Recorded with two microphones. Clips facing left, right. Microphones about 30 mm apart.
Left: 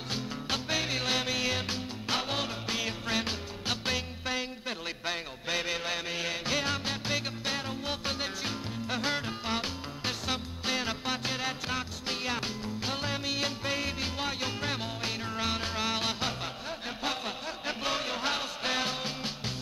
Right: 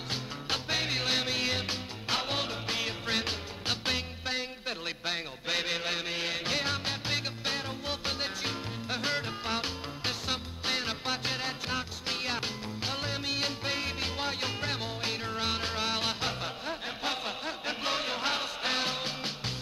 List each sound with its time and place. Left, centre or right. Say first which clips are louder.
0.5 s music: even; right
4.6 s a sound: even; right
5.9 s music: even; right
13.7 s music: even; right
16.3 s a sound: right 1 dB; right
19.0 s music: even; right